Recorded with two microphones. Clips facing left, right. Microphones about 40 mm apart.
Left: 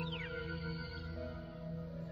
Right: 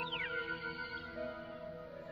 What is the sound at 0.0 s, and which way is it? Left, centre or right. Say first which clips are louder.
Music: right 3 dB; right.